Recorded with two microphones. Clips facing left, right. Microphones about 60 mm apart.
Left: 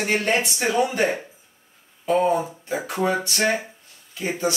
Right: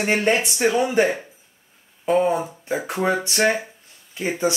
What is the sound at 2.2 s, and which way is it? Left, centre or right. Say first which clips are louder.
Speech: left 1 dB; right.